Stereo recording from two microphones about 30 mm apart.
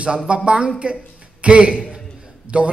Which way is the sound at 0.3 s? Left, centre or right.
Right.